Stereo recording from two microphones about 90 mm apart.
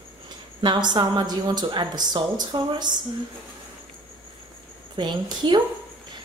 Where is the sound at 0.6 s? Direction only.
55° right (ahead or behind).